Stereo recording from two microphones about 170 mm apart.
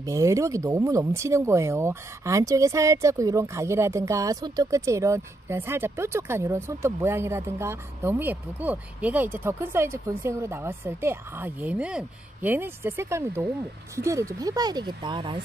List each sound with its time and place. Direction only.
0.0 s speech: 20° right (ahead or behind)